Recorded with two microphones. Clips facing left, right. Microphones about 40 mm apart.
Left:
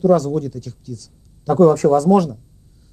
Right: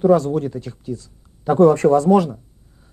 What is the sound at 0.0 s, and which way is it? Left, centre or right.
A woman's voice, right.